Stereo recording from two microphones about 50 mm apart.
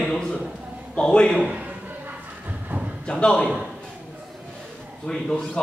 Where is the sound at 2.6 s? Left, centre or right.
Right.